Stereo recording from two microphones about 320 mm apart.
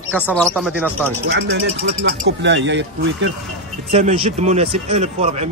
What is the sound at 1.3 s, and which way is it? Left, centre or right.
Speech, right.